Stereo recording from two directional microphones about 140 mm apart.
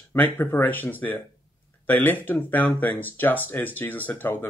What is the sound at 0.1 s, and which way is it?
Speech, 15° left (ahead or behind).